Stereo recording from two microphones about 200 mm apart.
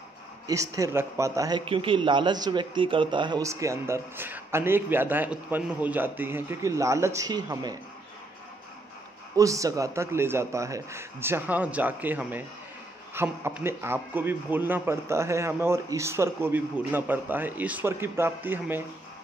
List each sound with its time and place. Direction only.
0.5 s a man's voice: 15° right (ahead or behind)
9.4 s a man's voice: 15° right (ahead or behind)